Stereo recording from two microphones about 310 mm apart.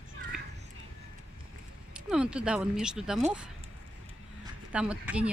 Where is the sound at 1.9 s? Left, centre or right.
Centre.